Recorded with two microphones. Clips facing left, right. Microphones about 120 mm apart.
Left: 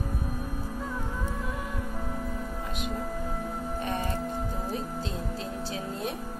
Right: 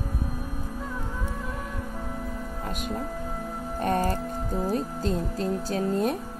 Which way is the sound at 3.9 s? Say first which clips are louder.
Right 8 dB; 40° right (ahead or behind).